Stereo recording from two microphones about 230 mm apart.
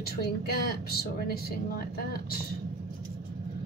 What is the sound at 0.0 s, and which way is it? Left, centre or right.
A woman's voice, left.